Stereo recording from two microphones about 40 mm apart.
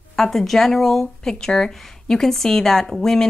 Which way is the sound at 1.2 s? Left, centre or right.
Centre.